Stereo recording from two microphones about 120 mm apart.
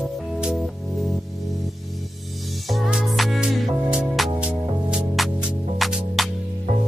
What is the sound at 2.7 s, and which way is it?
Music, 5° right (ahead or behind).